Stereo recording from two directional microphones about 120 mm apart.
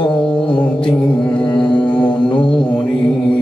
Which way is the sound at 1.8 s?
10° left (ahead or behind).